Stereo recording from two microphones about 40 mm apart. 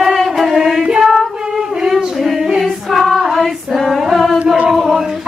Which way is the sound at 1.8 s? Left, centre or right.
Centre.